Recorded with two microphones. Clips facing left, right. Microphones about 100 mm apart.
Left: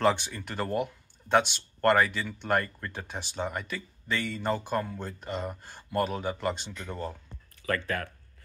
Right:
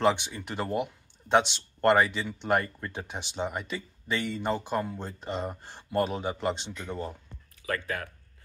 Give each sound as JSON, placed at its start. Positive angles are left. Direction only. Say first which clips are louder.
{"t": 0.0, "sound": "speech", "louder": "even", "side_deg": -20}